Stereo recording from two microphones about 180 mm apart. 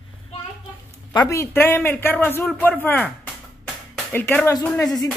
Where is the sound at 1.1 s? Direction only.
15° left (ahead or behind).